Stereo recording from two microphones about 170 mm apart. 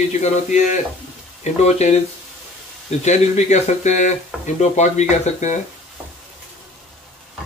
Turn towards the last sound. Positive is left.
turn(degrees=45)  # may be behind; listen again after turning